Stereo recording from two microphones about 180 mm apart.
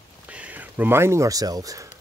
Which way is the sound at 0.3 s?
10° right (ahead or behind).